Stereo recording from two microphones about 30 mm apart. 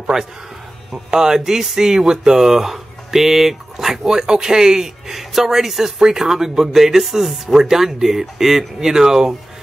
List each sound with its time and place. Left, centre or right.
0.0 s speech: centre
4.0 s speech: centre